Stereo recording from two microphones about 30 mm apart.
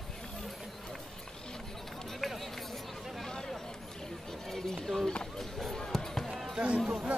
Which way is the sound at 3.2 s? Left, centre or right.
Centre.